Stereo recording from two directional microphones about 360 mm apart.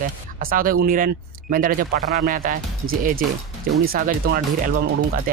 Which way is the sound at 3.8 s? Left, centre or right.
Right.